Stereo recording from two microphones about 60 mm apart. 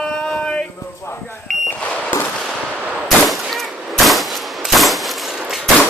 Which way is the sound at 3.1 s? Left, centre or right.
Centre.